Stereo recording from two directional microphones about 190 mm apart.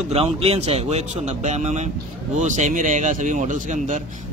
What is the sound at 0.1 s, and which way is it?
A man's voice, 30° right (ahead or behind).